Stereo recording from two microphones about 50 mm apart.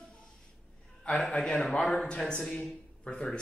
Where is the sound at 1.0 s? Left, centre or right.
Left.